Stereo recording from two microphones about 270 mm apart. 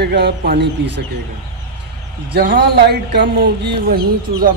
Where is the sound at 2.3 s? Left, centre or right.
Right.